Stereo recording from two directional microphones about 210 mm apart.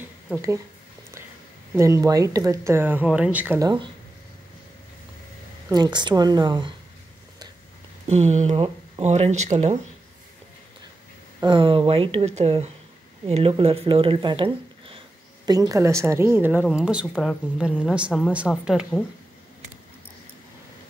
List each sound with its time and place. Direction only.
1.8 s speech: 15° right (ahead or behind)
5.7 s speech: 20° right (ahead or behind)
8.1 s speech: 30° right (ahead or behind)
11.4 s a woman's voice: 25° right (ahead or behind); by 18.9 s 5° right (ahead or behind)